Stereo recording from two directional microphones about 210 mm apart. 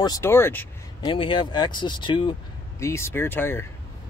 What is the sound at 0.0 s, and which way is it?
Speech, 15° left (ahead or behind).